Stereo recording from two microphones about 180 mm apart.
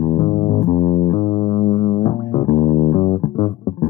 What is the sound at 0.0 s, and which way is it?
Music, 35° left (ahead or behind).